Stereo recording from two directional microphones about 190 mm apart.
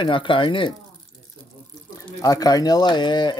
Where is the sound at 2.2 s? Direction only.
20° left (ahead or behind).